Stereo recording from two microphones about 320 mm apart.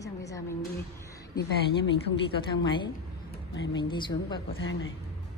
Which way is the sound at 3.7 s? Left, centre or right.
Centre.